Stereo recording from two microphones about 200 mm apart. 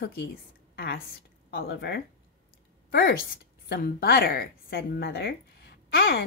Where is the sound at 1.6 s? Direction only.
55° left (ahead or behind).